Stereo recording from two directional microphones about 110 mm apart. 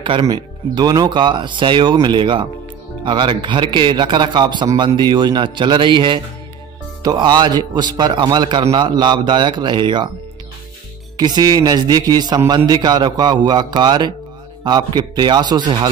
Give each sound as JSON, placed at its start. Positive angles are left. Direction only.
{"t": 0.2, "sound": "a man's voice", "side_deg": -40}
{"t": 11.1, "sound": "a man's voice", "side_deg": -40}